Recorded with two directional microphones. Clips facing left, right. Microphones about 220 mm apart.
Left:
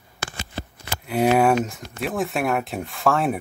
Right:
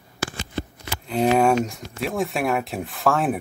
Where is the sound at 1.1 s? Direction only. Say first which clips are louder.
Even; 10° left (ahead or behind).